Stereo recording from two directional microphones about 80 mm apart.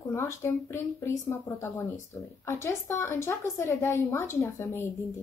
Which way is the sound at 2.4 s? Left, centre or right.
Left.